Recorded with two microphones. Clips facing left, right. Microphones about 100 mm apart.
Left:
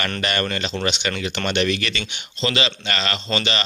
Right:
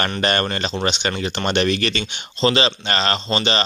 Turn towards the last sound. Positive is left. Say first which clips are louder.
# right 3 dB
turn(degrees=-30)  # may be behind; listen again after turning